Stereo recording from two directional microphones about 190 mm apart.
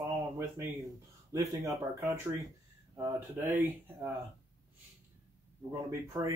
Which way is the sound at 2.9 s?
10° right (ahead or behind).